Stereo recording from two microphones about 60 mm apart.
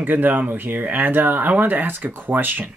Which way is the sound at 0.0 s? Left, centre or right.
Right.